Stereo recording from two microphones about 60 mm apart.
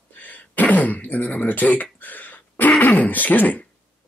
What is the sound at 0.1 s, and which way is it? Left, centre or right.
Throat clearing, left.